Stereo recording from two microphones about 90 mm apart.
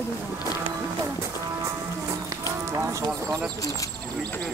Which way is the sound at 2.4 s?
35° right (ahead or behind).